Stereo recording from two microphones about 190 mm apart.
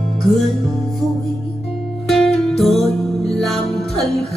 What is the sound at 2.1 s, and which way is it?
Music, centre (ahead or behind).